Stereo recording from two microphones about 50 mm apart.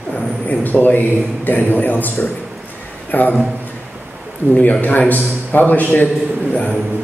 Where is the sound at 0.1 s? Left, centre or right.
Left.